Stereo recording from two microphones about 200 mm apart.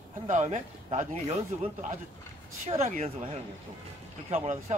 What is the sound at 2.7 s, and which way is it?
Speech, 35° right (ahead or behind).